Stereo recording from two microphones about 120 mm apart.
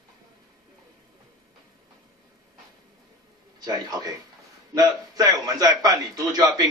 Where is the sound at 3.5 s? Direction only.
35° right (ahead or behind).